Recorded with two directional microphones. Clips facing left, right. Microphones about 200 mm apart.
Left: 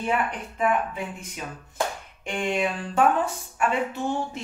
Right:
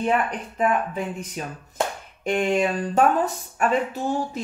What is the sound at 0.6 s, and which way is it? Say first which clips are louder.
A man's voice: right 2 dB; 40° right (ahead or behind).